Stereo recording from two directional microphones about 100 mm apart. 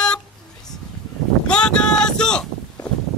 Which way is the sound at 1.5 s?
10° left (ahead or behind).